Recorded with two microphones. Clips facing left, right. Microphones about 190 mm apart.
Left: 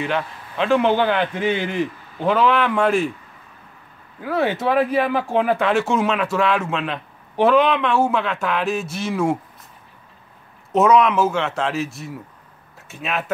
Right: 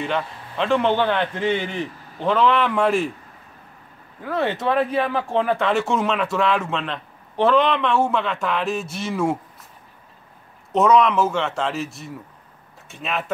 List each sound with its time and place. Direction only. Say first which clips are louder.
0.0 s speech: left 1 dB; 5° left (ahead or behind)
4.2 s speech: left 2 dB; 5° left (ahead or behind)
10.7 s speech: left 1 dB; 5° left (ahead or behind)